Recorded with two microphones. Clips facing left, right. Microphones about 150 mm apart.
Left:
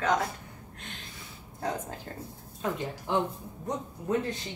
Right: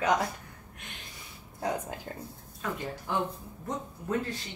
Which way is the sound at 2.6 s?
20° left (ahead or behind).